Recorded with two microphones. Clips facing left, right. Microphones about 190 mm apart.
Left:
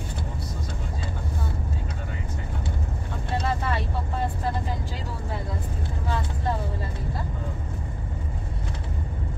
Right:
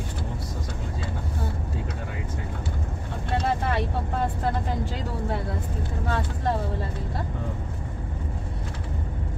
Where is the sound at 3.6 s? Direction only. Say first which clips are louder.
Right 2 dB; 60° right (ahead or behind).